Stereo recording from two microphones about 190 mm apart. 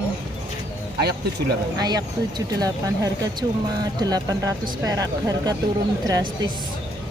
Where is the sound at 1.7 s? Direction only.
20° right (ahead or behind).